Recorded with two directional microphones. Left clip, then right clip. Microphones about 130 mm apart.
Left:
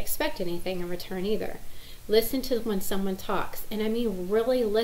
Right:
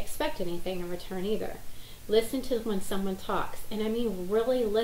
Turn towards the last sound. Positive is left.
turn(degrees=5)  # may be behind; listen again after turning